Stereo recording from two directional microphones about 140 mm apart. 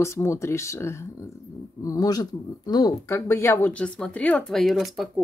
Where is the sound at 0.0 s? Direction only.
20° left (ahead or behind).